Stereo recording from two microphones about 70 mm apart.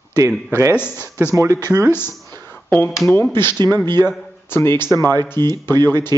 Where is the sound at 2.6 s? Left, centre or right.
Left.